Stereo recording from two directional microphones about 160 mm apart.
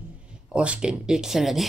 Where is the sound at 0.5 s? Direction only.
5° right (ahead or behind).